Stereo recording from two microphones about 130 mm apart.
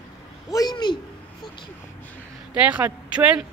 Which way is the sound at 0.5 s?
30° left (ahead or behind).